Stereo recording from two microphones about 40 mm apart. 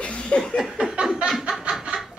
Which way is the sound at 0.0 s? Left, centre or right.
Left.